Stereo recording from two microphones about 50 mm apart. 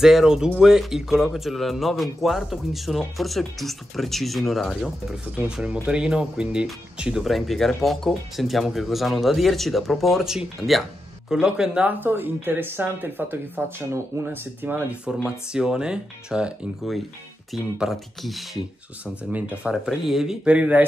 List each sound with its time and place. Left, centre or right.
0.0 s speech: centre
5.5 s speech: centre
7.2 s speech: centre
11.3 s speech: centre
11.8 s speech: right
15.2 s speech: centre
17.7 s speech: centre
19.3 s speech: right
19.9 s speech: centre
20.4 s speech: right